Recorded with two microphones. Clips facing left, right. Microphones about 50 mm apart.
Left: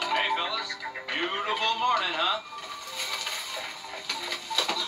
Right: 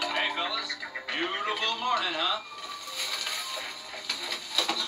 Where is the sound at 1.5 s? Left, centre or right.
Left.